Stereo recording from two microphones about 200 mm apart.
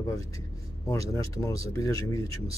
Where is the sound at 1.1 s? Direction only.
15° left (ahead or behind).